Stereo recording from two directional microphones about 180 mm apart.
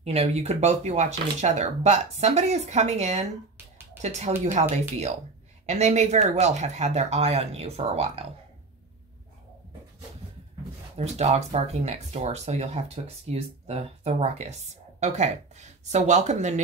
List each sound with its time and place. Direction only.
0.0 s speech: 35° right (ahead or behind)
4.5 s speech: 40° right (ahead or behind)
11.0 s speech: 35° right (ahead or behind)